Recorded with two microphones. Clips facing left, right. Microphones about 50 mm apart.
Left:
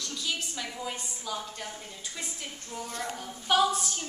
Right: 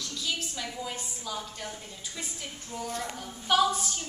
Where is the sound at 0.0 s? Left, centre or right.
Centre.